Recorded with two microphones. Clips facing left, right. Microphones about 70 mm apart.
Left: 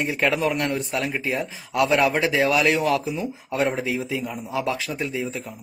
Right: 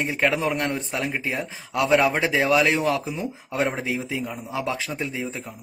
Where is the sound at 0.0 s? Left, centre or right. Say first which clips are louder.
Left 1 dB; right.